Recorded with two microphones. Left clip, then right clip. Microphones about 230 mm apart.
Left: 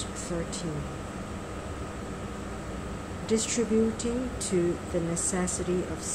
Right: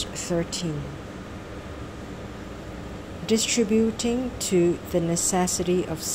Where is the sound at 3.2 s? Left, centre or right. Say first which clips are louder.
Right 5 dB; right.